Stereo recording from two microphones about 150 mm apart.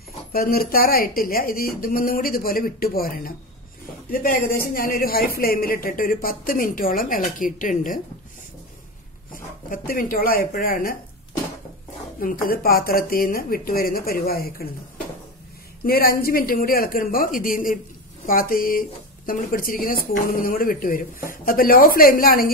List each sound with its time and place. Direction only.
0.3 s speech: 80° left; by 8.0 s 60° left (ahead or behind)
9.7 s speech: 70° left (ahead or behind)
12.2 s speech: 70° left (ahead or behind); by 14.7 s 90° left
15.8 s speech: 85° left